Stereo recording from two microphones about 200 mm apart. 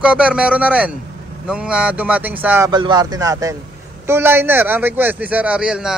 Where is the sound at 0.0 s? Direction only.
5° right (ahead or behind).